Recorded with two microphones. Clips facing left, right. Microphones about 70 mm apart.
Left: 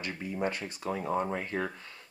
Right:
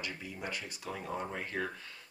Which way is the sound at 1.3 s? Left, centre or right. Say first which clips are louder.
Left 4 dB; left.